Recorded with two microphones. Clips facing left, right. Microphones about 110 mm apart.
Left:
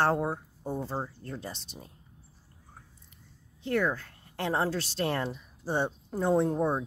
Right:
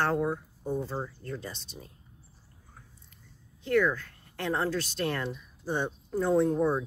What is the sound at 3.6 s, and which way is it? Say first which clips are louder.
Speech: right 3 dB; 30° left (ahead or behind).